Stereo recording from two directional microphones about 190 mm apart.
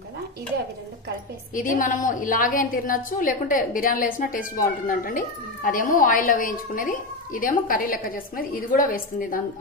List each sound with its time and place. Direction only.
1.5 s a woman's voice: 45° left (ahead or behind)